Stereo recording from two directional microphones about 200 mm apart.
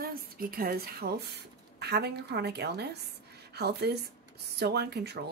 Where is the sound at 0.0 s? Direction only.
45° right (ahead or behind).